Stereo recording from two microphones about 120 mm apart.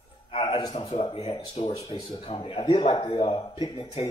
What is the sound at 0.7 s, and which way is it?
Speech, 55° left (ahead or behind).